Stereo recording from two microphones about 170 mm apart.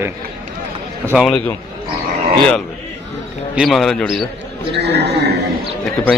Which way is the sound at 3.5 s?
Centre (ahead or behind).